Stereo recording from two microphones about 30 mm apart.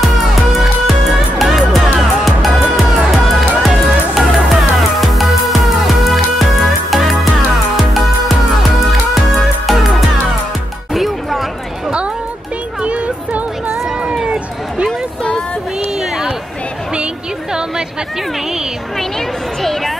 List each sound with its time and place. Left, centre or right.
0.0 s music: centre
12.8 s music: right
14.2 s run: right
16.0 s run: centre
17.5 s music: right
18.9 s a sound: centre